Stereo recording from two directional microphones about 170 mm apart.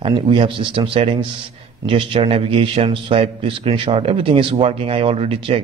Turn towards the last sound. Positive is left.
turn(degrees=-35)  # may be behind; listen again after turning